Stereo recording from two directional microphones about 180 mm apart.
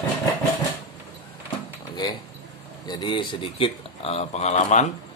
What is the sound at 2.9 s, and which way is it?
Speech, 25° left (ahead or behind).